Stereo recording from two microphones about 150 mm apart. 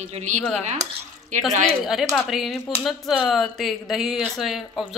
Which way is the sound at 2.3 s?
Centre (ahead or behind).